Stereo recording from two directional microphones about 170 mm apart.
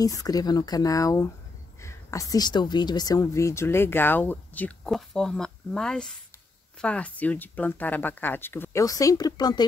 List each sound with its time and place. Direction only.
0.0 s speech: 20° left (ahead or behind)